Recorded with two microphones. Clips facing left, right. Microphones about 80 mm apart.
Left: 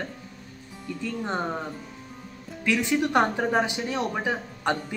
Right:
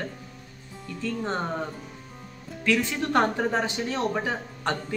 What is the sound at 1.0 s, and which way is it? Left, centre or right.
Speech, centre.